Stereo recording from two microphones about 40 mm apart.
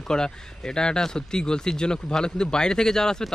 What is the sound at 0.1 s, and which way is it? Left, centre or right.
Speech, centre.